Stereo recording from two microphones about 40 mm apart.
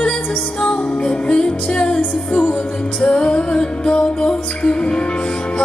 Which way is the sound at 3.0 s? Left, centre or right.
Left.